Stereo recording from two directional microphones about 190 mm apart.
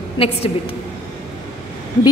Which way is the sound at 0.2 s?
30° left (ahead or behind).